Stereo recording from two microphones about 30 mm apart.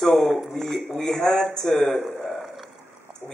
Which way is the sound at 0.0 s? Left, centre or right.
Centre.